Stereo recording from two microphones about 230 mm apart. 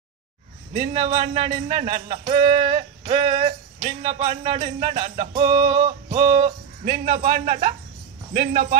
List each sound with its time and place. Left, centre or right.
0.7 s speech: right